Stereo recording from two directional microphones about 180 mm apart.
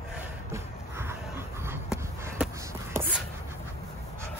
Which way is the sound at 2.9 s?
10° right (ahead or behind).